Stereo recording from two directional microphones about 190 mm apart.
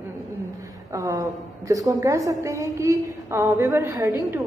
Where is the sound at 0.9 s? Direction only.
15° right (ahead or behind).